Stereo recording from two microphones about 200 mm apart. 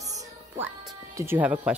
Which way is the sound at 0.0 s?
15° right (ahead or behind).